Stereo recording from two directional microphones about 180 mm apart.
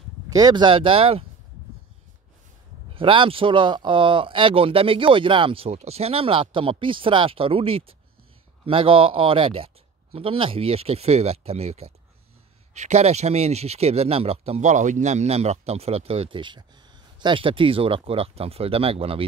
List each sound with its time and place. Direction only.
0.3 s speech: 20° right (ahead or behind)
2.9 s speech: 30° right (ahead or behind)